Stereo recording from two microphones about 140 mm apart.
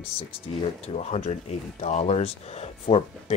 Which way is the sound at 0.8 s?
50° left (ahead or behind).